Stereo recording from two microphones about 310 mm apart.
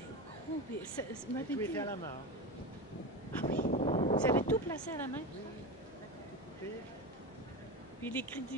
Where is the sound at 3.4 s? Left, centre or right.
Left.